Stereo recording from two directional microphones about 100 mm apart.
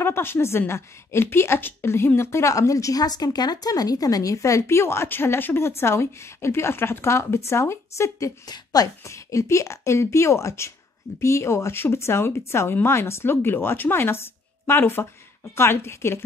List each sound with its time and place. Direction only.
0.0 s a woman's voice: 25° left (ahead or behind)